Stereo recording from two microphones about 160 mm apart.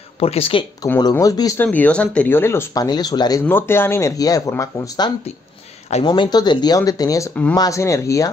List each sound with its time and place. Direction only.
0.2 s speech: 35° left (ahead or behind)
0.9 s speech: 25° left (ahead or behind)
1.6 s speech: 10° left (ahead or behind)